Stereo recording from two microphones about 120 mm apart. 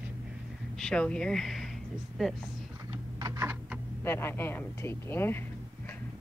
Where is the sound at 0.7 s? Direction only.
5° left (ahead or behind).